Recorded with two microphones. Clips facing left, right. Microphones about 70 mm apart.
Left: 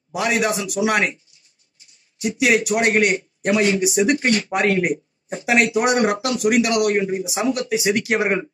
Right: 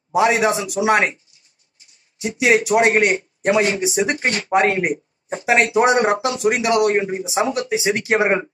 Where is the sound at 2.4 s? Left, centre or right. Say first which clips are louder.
Right 3 dB; right.